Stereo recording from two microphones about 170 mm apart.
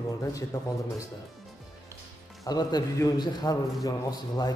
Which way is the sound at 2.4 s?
25° left (ahead or behind).